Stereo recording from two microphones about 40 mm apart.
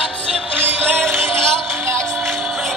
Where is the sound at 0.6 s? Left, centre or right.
Right.